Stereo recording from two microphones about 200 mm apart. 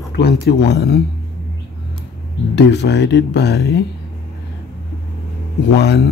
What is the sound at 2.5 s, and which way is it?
Speech, 60° left (ahead or behind).